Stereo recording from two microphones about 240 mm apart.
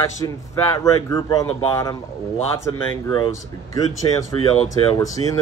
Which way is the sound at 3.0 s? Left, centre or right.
Centre.